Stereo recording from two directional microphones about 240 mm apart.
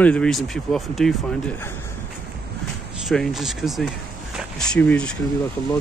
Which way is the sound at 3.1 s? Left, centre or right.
Centre.